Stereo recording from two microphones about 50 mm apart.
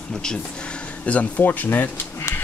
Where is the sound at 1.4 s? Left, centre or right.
Left.